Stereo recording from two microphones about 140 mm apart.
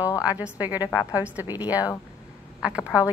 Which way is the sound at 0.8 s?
25° left (ahead or behind).